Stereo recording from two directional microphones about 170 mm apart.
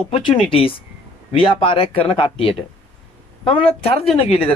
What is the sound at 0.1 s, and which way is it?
Speech, 35° left (ahead or behind).